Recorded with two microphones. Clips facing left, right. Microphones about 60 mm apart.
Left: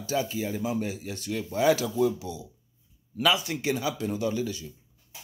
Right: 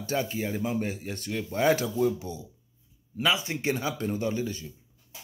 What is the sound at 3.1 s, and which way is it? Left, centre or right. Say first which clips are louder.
A man's voice: left 2 dB; right.